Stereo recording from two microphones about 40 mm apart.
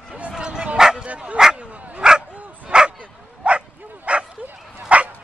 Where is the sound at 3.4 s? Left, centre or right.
Right.